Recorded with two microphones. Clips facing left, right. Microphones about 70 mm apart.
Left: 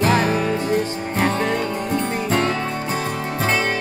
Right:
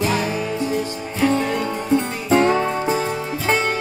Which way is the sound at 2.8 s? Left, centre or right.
Left.